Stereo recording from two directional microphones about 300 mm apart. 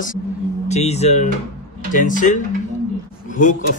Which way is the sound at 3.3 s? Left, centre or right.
Left.